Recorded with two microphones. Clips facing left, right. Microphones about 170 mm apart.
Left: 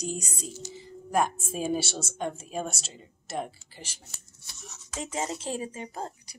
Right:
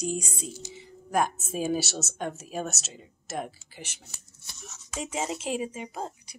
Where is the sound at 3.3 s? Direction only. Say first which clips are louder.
Even; 5° right (ahead or behind).